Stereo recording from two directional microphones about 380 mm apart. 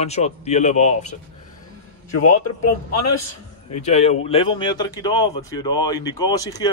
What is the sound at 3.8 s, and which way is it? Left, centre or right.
Speech, centre.